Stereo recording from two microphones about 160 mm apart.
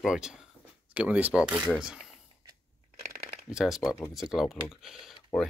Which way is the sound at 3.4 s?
5° right (ahead or behind).